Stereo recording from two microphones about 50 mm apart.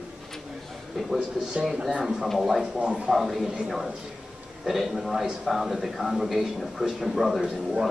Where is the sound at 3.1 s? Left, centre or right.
Centre.